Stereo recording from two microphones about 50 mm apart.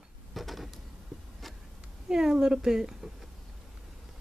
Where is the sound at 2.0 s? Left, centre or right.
Centre.